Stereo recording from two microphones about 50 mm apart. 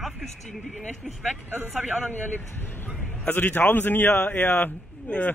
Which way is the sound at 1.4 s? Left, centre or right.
Right.